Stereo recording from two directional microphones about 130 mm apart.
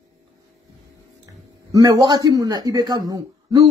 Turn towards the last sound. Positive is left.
turn(degrees=-30)  # may be behind; listen again after turning